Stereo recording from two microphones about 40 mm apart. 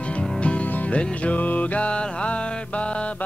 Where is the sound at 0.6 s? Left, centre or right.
Left.